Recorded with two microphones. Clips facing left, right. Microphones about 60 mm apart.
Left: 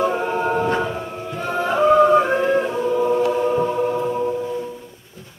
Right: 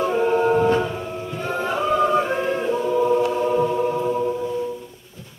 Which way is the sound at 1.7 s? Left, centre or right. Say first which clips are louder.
Left 6 dB; centre.